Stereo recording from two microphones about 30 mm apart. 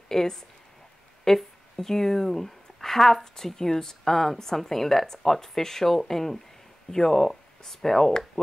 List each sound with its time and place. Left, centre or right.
0.1 s speech: centre